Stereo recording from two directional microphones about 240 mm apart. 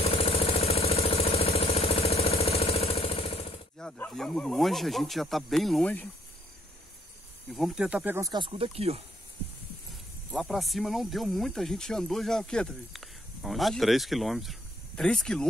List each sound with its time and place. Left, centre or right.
0.1 s vehicle: left
3.8 s speech: centre
7.5 s speech: centre; by 9.0 s right
10.3 s speech: centre